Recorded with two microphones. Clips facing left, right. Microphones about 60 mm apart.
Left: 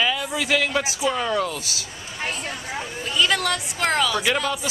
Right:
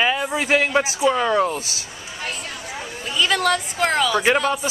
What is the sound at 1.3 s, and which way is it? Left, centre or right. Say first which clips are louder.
Speech: right 4 dB; right.